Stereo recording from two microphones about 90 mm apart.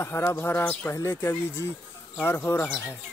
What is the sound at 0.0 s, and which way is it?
Speech, 30° left (ahead or behind).